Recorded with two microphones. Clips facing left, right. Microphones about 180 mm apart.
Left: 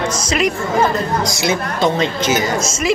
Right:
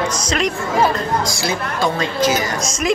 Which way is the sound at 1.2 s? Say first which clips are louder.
Left 3 dB; 20° left (ahead or behind).